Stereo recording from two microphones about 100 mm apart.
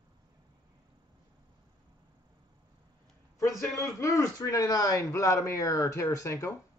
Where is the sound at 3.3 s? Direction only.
30° left (ahead or behind).